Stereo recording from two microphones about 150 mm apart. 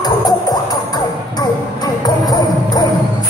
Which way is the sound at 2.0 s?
25° left (ahead or behind).